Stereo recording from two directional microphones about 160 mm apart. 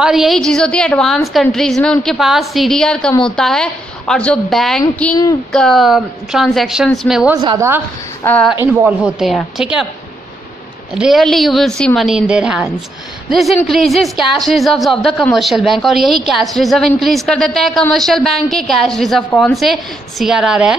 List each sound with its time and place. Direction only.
0.0 s a woman's voice: centre (ahead or behind)
7.3 s a woman's voice: 25° right (ahead or behind)
8.2 s speech: 10° left (ahead or behind)
8.5 s a woman's voice: 10° right (ahead or behind)
11.0 s a woman's voice: centre (ahead or behind)